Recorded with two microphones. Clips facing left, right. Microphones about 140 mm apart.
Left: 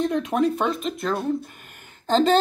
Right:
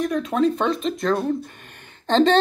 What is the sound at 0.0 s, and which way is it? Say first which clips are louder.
Speech: right 1 dB; 20° left (ahead or behind).